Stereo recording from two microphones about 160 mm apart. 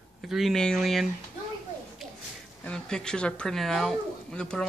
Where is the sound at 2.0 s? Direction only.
Centre (ahead or behind).